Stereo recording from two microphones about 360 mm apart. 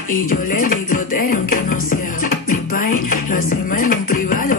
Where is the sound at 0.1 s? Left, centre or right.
Left.